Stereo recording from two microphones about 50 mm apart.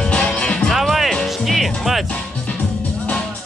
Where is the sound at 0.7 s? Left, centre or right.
Centre.